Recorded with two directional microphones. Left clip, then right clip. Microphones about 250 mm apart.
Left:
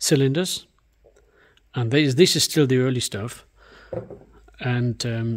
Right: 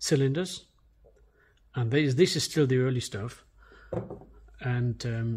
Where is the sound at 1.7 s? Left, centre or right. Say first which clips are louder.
Left 7 dB; left.